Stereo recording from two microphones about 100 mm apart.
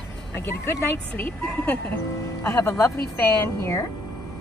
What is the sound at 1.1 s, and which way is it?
Speech, 20° left (ahead or behind).